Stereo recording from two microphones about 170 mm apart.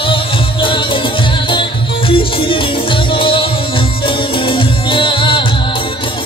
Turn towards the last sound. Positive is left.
turn(degrees=30)  # may be behind; listen again after turning